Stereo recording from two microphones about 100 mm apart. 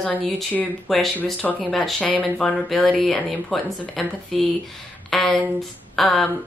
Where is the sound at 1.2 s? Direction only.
15° left (ahead or behind).